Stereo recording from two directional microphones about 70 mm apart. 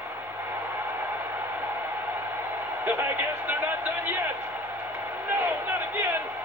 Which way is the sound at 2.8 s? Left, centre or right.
Right.